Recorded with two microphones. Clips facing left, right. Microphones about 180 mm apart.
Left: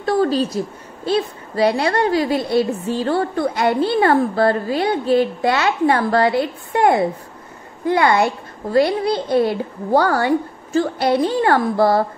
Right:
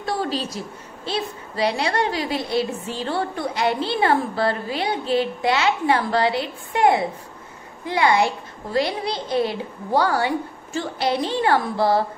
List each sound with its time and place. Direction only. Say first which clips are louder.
0.0 s a woman's voice: left 8 dB; 50° left (ahead or behind)
1.6 s a woman's voice: left 5 dB; 50° left (ahead or behind)